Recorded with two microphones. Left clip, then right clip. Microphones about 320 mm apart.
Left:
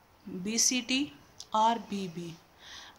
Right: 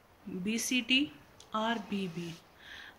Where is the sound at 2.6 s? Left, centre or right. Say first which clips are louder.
Left 2 dB; centre.